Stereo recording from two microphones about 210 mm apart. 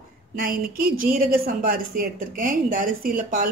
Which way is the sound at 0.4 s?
45° right (ahead or behind).